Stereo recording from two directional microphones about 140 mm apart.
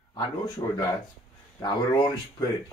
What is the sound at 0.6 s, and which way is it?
Speech, 25° left (ahead or behind).